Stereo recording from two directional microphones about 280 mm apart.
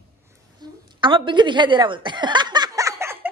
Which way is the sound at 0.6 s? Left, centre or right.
Centre.